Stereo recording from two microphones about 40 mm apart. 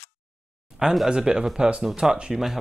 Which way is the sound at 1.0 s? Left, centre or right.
Centre.